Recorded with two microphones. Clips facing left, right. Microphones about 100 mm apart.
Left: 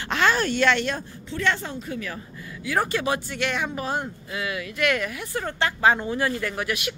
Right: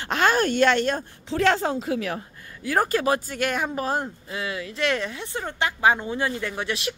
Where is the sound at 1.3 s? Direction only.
90° right.